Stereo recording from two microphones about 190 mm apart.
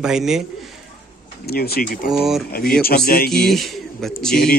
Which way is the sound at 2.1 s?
Centre (ahead or behind).